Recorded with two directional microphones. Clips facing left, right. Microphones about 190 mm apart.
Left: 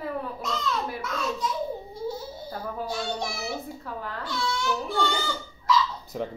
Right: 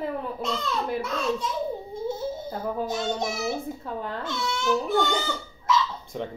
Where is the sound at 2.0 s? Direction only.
25° right (ahead or behind).